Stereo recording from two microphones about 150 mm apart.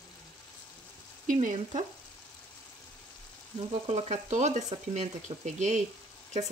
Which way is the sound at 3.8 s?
45° right (ahead or behind).